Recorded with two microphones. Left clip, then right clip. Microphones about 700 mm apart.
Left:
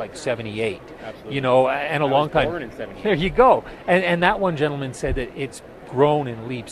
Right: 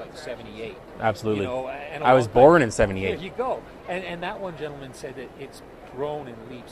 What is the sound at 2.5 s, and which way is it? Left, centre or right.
Speech, right.